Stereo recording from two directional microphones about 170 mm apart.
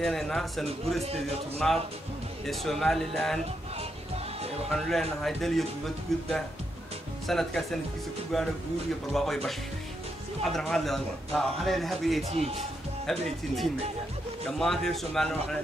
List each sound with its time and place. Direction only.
0.0 s a man's voice: centre (ahead or behind)
4.6 s a man's voice: centre (ahead or behind)
7.2 s a man's voice: centre (ahead or behind)
12.3 s speech: 35° right (ahead or behind)
13.0 s a man's voice: 5° left (ahead or behind)